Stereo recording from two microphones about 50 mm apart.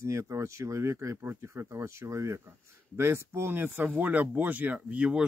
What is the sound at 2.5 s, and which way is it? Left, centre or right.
Speech, right.